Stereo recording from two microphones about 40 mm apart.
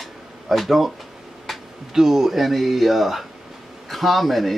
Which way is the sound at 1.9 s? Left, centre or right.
Centre.